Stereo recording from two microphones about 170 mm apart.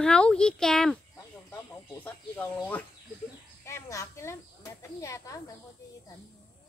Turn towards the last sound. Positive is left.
turn(degrees=20)  # may be behind; listen again after turning